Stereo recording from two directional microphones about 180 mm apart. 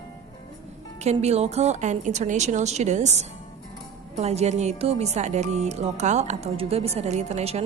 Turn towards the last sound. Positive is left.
turn(degrees=-35)  # may be behind; listen again after turning